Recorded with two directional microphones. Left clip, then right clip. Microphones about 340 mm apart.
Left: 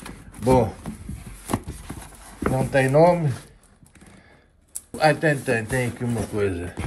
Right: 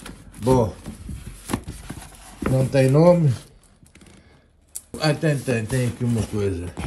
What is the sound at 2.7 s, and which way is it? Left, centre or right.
Speech, right.